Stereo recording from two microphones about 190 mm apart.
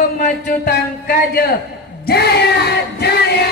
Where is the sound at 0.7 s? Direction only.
50° left (ahead or behind).